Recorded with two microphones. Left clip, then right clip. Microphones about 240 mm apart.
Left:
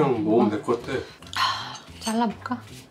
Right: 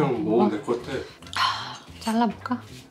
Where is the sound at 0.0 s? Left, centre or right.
Centre.